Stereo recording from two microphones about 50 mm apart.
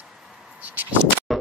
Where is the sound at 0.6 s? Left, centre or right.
Right.